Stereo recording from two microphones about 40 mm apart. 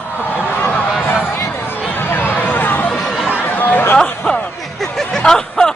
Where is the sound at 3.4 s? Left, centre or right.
Left.